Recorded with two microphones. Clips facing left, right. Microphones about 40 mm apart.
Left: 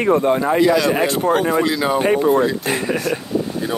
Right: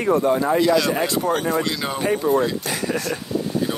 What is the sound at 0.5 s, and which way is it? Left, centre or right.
Speech, centre.